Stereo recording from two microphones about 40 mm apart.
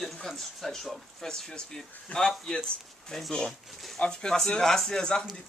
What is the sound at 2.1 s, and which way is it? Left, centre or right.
Speech, left.